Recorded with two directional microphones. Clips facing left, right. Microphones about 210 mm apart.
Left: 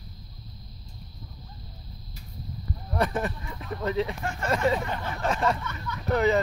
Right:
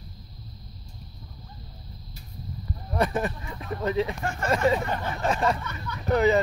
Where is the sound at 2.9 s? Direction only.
15° right (ahead or behind).